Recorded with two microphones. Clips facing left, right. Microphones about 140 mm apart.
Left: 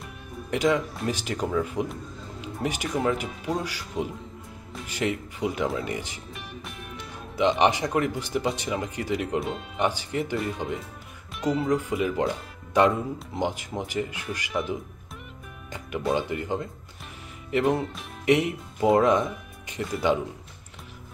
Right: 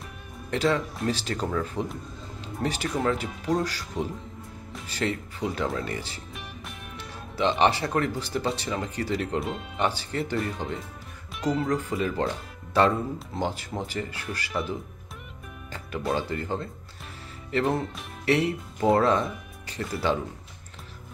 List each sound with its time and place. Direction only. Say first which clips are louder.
0.5 s speech: left 1 dB; 15° left (ahead or behind)
2.4 s music: even; 15° left (ahead or behind)
3.0 s speech: left 1 dB; 15° left (ahead or behind)
6.3 s music: left 3 dB; centre (ahead or behind)
7.3 s speech: left 1 dB; 15° left (ahead or behind)
9.4 s speech: left 1 dB; centre (ahead or behind)
9.8 s speech: left 1 dB; 15° left (ahead or behind)
16.2 s speech: left 2 dB; 15° left (ahead or behind)